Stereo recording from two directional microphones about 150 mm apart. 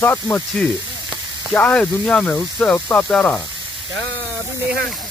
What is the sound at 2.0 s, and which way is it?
Speech, 5° left (ahead or behind).